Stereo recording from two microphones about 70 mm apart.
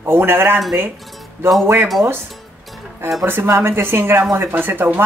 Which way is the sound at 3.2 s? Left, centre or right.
Right.